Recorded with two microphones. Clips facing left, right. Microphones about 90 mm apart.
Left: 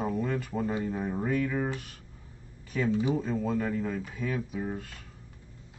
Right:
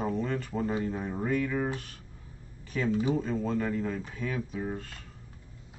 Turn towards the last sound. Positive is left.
turn(degrees=5)  # may be behind; listen again after turning